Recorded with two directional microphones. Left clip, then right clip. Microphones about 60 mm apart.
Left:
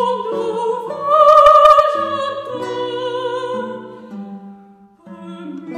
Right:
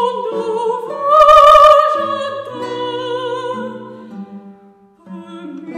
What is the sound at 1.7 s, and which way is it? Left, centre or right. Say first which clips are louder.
Opera: right 1 dB; right.